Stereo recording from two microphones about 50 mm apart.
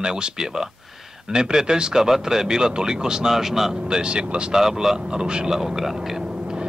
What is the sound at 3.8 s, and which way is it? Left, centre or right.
Speech, centre.